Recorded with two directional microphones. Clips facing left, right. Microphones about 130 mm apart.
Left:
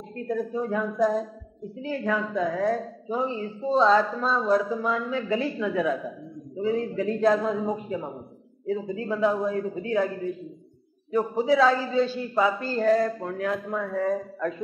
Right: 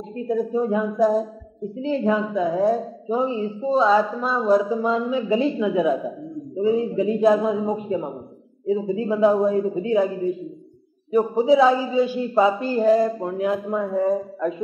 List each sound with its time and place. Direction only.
0.1 s speech: 15° right (ahead or behind)
3.7 s a man's voice: 5° right (ahead or behind)
4.5 s a man's voice: 20° right (ahead or behind)